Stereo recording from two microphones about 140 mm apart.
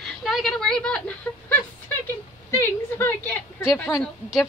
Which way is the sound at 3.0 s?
15° left (ahead or behind).